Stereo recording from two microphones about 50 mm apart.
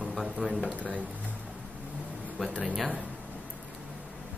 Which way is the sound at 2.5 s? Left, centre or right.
Right.